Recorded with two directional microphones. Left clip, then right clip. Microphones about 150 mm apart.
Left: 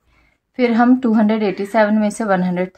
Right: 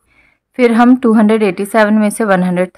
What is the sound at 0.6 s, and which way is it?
A woman's voice, 30° right (ahead or behind).